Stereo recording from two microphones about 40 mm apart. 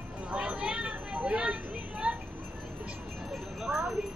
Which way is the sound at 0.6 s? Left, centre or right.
Right.